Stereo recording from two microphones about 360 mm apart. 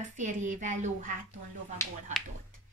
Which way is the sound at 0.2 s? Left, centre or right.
Centre.